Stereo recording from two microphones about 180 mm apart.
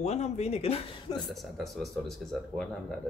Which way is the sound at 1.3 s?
Centre (ahead or behind).